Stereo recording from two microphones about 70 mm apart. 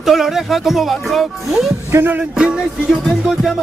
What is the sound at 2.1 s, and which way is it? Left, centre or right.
Music, centre.